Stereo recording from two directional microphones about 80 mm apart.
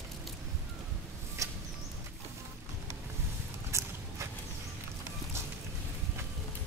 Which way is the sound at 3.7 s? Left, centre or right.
Right.